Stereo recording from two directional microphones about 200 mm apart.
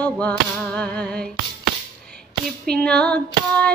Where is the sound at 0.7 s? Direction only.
5° left (ahead or behind).